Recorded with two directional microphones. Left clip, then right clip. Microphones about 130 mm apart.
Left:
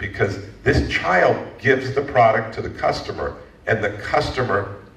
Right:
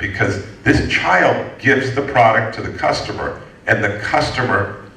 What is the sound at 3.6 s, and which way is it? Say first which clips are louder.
Speech: right 5 dB; 45° right (ahead or behind).